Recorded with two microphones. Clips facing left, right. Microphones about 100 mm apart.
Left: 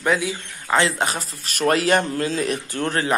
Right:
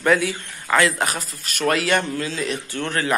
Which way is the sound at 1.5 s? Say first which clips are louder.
Left 2 dB; 40° left (ahead or behind).